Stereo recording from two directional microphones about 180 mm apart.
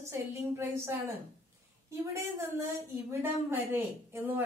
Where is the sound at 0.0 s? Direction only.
15° right (ahead or behind).